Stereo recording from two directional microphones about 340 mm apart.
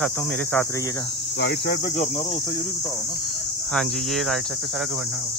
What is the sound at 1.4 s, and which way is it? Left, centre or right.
Insect, left.